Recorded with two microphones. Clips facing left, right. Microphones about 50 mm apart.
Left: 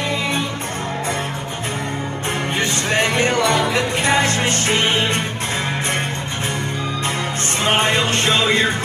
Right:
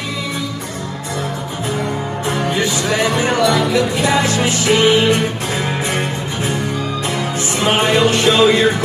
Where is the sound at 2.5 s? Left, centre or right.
Left.